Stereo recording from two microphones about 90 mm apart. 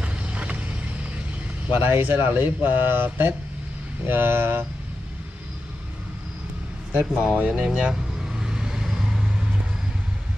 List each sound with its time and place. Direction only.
0.0 s vehicle: 15° right (ahead or behind)
1.7 s speech: 25° right (ahead or behind)
6.9 s speech: 20° right (ahead or behind)
7.3 s vehicle: 10° right (ahead or behind)